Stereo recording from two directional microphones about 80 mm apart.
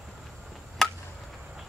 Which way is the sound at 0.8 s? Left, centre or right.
Centre.